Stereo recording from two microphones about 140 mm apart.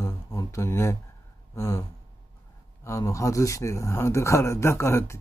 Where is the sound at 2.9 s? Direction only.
20° left (ahead or behind).